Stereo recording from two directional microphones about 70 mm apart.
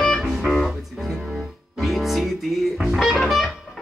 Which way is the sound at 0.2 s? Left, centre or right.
Centre.